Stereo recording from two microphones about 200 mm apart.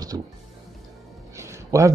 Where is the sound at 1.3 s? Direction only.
15° right (ahead or behind).